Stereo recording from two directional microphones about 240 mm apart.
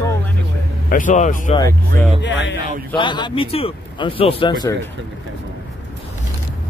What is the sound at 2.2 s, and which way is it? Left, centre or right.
Speech, left.